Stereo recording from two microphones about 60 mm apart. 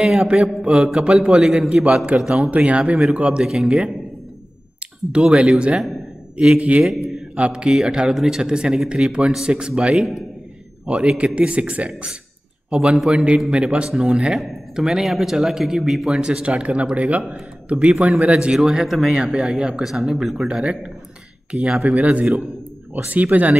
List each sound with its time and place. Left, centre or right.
0.0 s speech: centre
2.5 s speech: centre
5.1 s speech: centre
6.8 s speech: centre
7.3 s a man's voice: centre
16.2 s speech: centre
18.6 s speech: centre
20.6 s speech: centre
22.0 s speech: right